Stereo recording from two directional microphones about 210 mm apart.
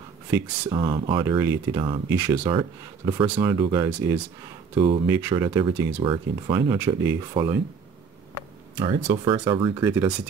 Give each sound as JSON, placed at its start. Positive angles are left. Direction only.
{"t": 0.3, "sound": "speech", "side_deg": -20}
{"t": 5.0, "sound": "speech", "side_deg": -15}
{"t": 5.9, "sound": "speech", "side_deg": -25}
{"t": 8.7, "sound": "speech", "side_deg": -25}
{"t": 9.8, "sound": "speech", "side_deg": -10}